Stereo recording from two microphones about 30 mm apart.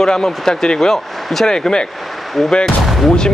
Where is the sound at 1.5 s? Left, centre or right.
Left.